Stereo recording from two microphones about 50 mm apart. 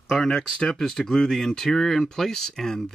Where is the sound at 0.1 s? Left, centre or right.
Centre.